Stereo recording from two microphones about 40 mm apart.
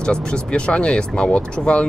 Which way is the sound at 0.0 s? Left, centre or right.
Left.